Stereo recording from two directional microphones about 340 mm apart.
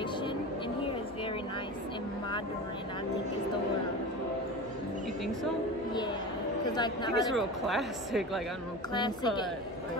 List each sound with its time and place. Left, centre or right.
0.0 s a sound: centre
6.7 s a woman's voice: centre
7.2 s speech: centre
8.9 s a woman's voice: centre